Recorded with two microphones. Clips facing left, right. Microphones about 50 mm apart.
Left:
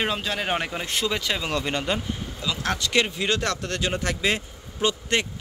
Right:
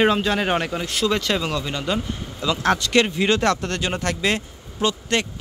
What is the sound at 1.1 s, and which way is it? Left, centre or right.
Speech, centre.